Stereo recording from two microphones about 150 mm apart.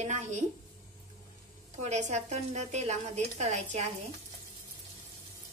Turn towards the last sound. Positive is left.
turn(degrees=-50)  # may be behind; listen again after turning